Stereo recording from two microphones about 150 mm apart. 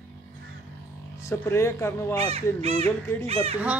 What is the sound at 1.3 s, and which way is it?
Speech, 20° left (ahead or behind).